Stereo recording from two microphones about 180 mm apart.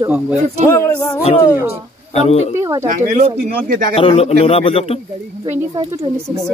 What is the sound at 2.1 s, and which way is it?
Speech, 35° left (ahead or behind).